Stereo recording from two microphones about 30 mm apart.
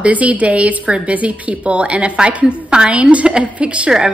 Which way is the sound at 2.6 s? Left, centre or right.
Right.